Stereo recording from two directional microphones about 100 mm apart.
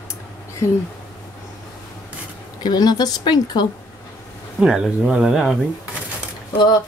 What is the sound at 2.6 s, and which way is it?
A woman's voice, 45° left (ahead or behind).